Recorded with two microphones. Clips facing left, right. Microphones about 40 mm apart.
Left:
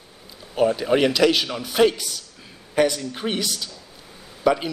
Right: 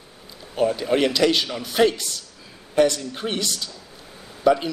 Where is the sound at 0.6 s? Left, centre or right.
Centre.